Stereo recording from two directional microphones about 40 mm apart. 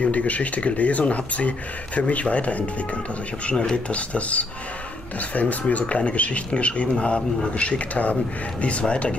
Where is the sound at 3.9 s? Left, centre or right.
Left.